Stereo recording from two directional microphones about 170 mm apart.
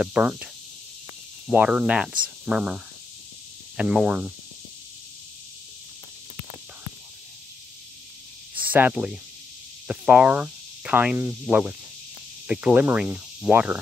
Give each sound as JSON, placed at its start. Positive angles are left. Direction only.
{"t": 0.0, "sound": "speech", "side_deg": -5}
{"t": 1.5, "sound": "speech", "side_deg": -5}
{"t": 8.5, "sound": "speech", "side_deg": -10}